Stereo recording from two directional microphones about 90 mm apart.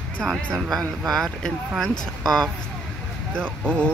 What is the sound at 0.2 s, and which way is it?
Speech, 5° left (ahead or behind).